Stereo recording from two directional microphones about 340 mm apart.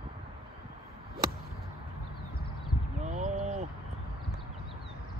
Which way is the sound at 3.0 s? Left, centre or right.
Right.